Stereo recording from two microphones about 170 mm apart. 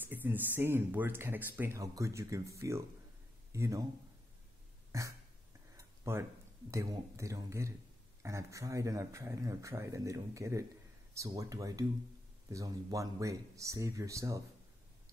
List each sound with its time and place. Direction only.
0.0 s speech: 10° right (ahead or behind)
4.9 s a sound: 20° right (ahead or behind)
6.7 s speech: 15° right (ahead or behind)